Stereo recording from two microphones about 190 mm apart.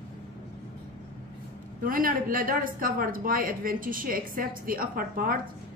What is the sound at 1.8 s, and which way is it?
Speech, 45° right (ahead or behind).